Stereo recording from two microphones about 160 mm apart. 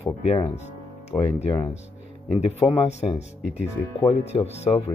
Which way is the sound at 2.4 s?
40° left (ahead or behind).